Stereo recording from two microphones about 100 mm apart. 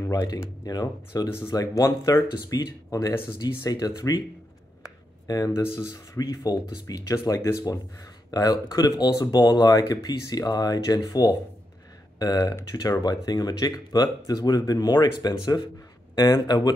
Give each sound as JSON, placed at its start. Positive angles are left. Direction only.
{"t": 0.1, "sound": "speech", "side_deg": 35}
{"t": 5.2, "sound": "speech", "side_deg": 40}